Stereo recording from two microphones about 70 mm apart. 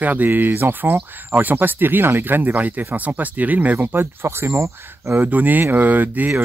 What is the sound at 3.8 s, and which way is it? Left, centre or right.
Speech, right.